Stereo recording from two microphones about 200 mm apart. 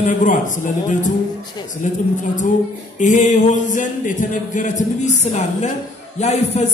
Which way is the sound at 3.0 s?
40° left (ahead or behind).